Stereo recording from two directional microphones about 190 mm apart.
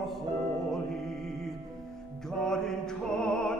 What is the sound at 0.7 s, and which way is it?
Mantra, centre (ahead or behind).